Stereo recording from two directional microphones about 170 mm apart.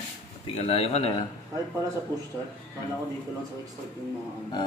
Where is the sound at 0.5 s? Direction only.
35° left (ahead or behind).